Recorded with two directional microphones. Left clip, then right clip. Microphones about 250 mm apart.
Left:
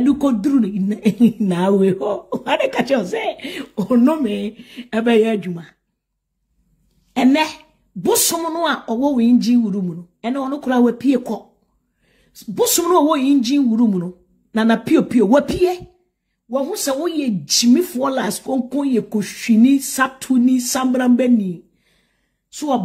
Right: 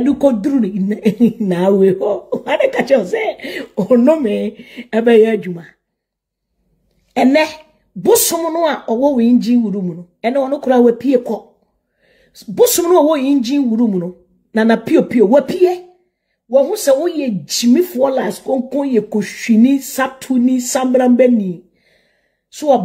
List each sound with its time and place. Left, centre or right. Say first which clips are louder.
0.0 s speech: right 4 dB; centre
7.2 s a woman's voice: right 4 dB; centre